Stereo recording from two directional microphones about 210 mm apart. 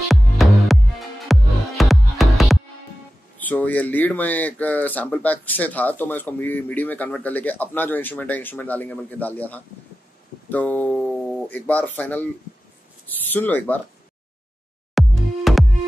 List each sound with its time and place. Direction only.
0.1 s music: centre (ahead or behind)
3.3 s speech: 10° left (ahead or behind)
15.0 s music: centre (ahead or behind)